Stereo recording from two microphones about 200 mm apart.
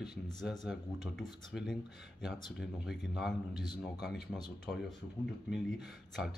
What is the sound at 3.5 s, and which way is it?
Speech, 20° left (ahead or behind).